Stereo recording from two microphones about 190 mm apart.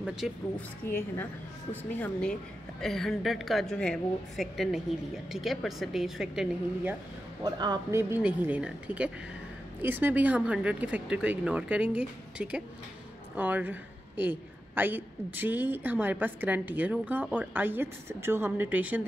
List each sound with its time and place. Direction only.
0.2 s a woman's voice: centre (ahead or behind)
0.6 s a woman's voice: 10° left (ahead or behind); by 7.0 s 5° right (ahead or behind)
7.4 s speech: 20° right (ahead or behind)
8.0 s a woman's voice: 10° right (ahead or behind)